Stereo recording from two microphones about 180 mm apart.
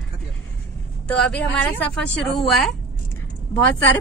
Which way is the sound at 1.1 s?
5° left (ahead or behind).